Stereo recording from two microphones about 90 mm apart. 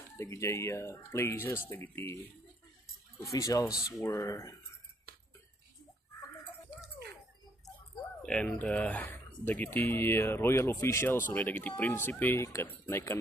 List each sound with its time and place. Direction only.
0.2 s speech: 35° left (ahead or behind)
3.3 s speech: 40° left (ahead or behind)
8.2 s speech: 10° left (ahead or behind); by 13.2 s 30° left (ahead or behind)